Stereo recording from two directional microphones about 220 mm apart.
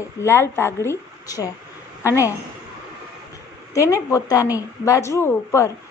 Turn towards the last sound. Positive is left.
turn(degrees=10)  # may be behind; listen again after turning